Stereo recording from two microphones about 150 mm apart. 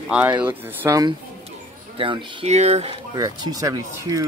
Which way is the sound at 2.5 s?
45° right (ahead or behind).